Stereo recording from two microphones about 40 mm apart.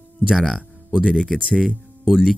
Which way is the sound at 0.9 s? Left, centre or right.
Centre.